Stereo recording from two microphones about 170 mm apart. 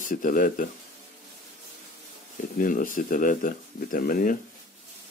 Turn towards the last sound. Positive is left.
turn(degrees=55)  # may be behind; listen again after turning